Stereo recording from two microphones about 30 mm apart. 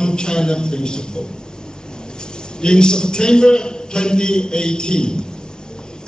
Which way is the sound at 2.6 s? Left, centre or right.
Left.